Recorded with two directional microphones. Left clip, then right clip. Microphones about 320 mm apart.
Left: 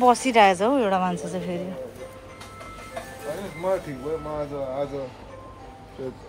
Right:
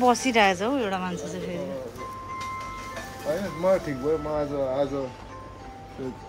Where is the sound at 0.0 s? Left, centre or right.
Centre.